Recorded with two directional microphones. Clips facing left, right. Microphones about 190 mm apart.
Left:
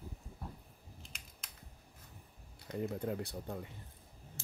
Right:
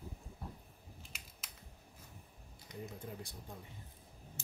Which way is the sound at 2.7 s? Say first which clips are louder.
Left 10 dB; 65° left (ahead or behind).